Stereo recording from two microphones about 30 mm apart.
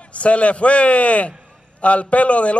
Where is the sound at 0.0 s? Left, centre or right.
Left.